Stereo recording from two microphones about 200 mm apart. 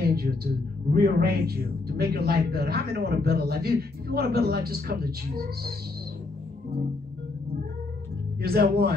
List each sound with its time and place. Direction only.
0.0 s a sound: 50° right (ahead or behind)
0.9 s a man's voice: 50° right (ahead or behind)
8.4 s a man's voice: 50° right (ahead or behind)